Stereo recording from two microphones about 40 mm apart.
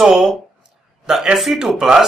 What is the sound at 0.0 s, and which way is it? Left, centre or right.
A man's voice, centre.